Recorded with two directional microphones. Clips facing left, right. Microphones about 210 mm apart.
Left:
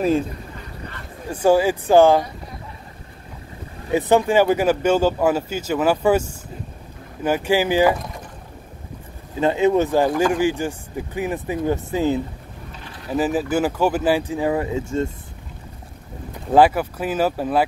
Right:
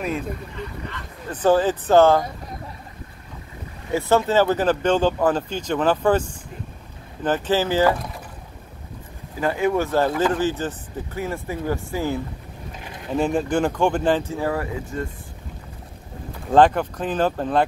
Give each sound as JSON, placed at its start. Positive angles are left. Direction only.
{"t": 1.3, "sound": "speech", "side_deg": 10}
{"t": 3.9, "sound": "speech", "side_deg": 15}
{"t": 7.2, "sound": "speech", "side_deg": 10}
{"t": 9.4, "sound": "speech", "side_deg": 20}
{"t": 13.1, "sound": "speech", "side_deg": 5}
{"t": 16.5, "sound": "speech", "side_deg": 5}